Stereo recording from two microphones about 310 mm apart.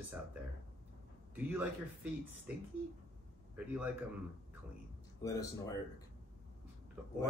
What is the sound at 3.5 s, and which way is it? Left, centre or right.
Speech, centre.